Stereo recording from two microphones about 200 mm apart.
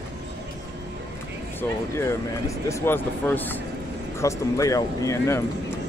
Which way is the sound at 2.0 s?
15° left (ahead or behind).